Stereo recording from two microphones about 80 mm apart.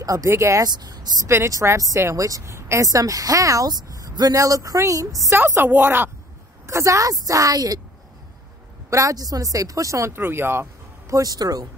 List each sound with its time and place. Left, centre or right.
0.0 s a woman's voice: right
0.7 s a woman's voice: right
1.3 s a woman's voice: right
5.3 s a woman's voice: right
6.7 s a woman's voice: right
8.9 s a woman's voice: right
10.1 s a woman's voice: right
11.1 s a woman's voice: right